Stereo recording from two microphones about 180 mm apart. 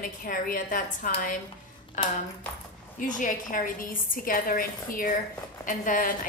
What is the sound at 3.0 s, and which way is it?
A woman's voice, 45° left (ahead or behind).